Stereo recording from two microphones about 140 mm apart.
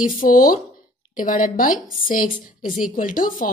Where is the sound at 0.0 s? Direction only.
85° left.